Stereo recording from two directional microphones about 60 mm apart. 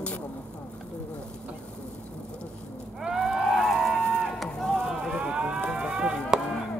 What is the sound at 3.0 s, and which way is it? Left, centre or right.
Livestock, centre.